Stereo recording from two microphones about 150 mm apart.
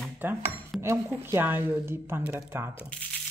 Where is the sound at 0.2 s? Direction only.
15° right (ahead or behind).